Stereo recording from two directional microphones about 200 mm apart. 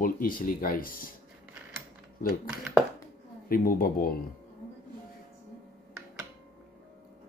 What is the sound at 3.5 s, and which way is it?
Speech, 45° left (ahead or behind).